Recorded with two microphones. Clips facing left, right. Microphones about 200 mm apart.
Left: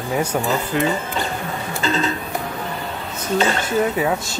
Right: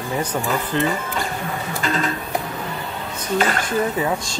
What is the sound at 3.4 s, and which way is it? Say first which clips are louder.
Dishes: left 1 dB; 25° left (ahead or behind).